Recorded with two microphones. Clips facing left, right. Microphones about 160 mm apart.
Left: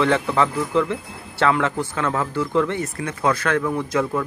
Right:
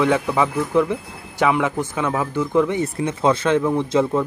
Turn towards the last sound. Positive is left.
turn(degrees=-25)  # may be behind; listen again after turning